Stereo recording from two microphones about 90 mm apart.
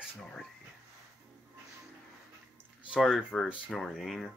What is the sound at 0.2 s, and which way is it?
Speech, 5° left (ahead or behind).